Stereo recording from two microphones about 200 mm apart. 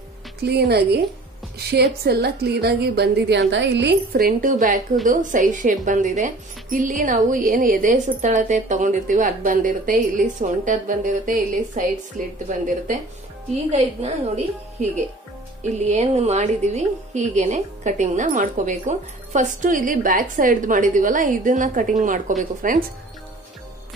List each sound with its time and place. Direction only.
0.4 s a woman's voice: 55° right (ahead or behind)